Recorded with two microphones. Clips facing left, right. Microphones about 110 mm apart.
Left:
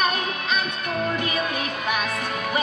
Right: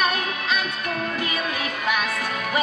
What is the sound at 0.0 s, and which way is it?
Music, 30° left (ahead or behind).